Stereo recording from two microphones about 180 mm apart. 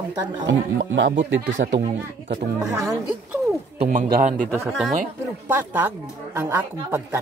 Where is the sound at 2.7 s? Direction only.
15° right (ahead or behind).